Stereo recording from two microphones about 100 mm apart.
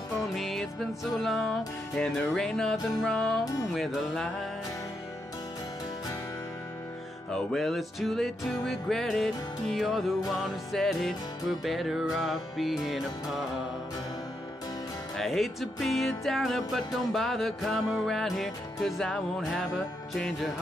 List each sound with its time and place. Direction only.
0.3 s music: centre (ahead or behind)
7.2 s music: 5° left (ahead or behind)
15.1 s music: centre (ahead or behind)